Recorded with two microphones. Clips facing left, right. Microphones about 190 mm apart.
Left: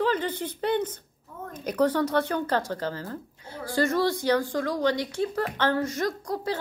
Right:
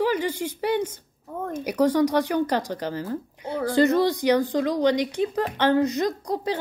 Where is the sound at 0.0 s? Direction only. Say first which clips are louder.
Right 2 dB; 10° right (ahead or behind).